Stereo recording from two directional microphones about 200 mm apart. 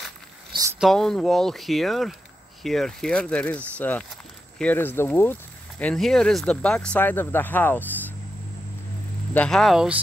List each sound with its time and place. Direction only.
0.7 s speech: centre (ahead or behind)
9.3 s speech: 5° left (ahead or behind)